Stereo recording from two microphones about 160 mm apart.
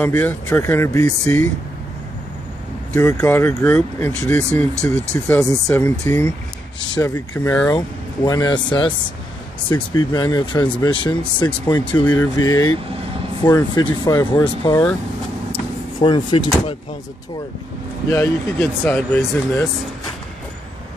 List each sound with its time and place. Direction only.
0.0 s speech: 10° left (ahead or behind)
3.0 s speech: 20° left (ahead or behind)
7.3 s speech: 10° left (ahead or behind)
7.7 s speech: 25° left (ahead or behind)
9.9 s speech: 25° left (ahead or behind)
16.0 s speech: 30° left (ahead or behind)
18.1 s speech: 15° left (ahead or behind)